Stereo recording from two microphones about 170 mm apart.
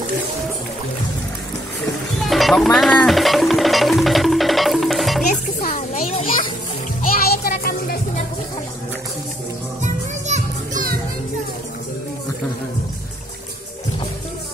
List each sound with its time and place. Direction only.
2.1 s music: centre (ahead or behind)
5.6 s music: 50° left (ahead or behind)
7.0 s music: 60° left (ahead or behind)
9.8 s children playing: 45° right (ahead or behind)